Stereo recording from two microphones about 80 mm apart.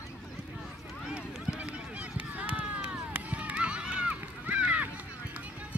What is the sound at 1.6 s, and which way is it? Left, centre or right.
Run, centre.